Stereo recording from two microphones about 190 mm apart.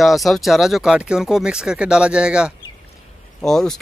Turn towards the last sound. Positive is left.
turn(degrees=0)  # may be behind; listen again after turning